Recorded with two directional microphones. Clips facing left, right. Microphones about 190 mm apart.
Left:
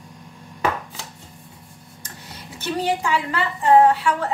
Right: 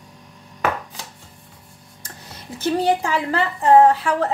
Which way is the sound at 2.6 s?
35° right (ahead or behind).